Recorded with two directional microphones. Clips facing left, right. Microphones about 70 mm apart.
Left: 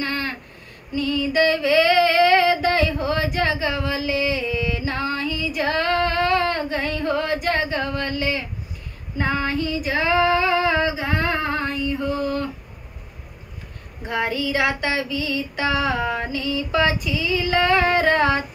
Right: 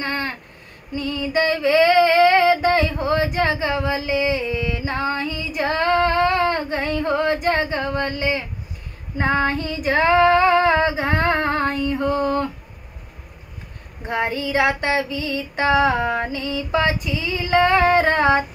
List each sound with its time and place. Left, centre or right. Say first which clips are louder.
0.0 s a sound: right 1 dB; right
0.9 s female singing: left 1 dB; right
14.0 s female singing: right 1 dB; right